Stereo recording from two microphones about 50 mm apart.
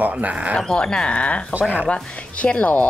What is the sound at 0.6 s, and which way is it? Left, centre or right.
Speech, centre.